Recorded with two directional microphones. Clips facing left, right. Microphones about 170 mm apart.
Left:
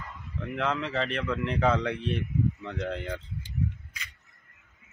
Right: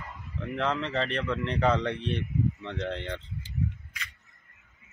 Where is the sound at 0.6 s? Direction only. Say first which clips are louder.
Even; centre (ahead or behind).